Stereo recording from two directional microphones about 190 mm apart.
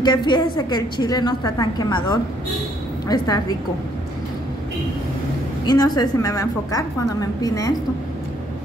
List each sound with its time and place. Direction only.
0.0 s a woman's voice: 25° left (ahead or behind)
5.7 s a woman's voice: 20° left (ahead or behind)